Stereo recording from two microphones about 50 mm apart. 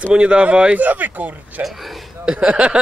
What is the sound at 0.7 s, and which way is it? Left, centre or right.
Speech, right.